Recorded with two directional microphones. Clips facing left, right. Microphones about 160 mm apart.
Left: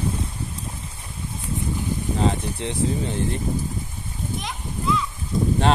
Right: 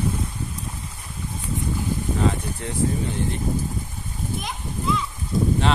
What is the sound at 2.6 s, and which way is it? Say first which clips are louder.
Speech: left 5 dB; 20° left (ahead or behind).